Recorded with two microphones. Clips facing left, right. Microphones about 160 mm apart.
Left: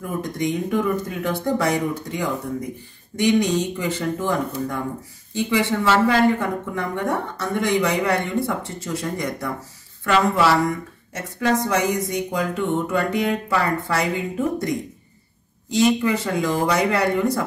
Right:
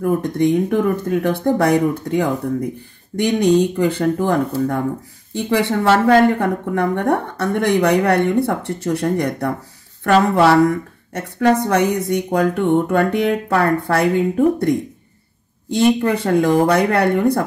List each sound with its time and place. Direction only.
0.0 s speech: 60° right (ahead or behind)
15.7 s speech: 55° right (ahead or behind)